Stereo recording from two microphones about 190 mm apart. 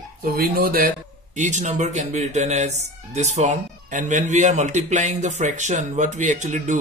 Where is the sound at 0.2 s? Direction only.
50° right (ahead or behind).